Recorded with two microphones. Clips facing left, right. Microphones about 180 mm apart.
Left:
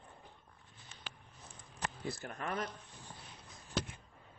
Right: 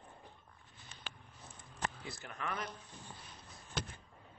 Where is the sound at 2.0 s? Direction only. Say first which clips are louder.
Left 3 dB; 40° left (ahead or behind).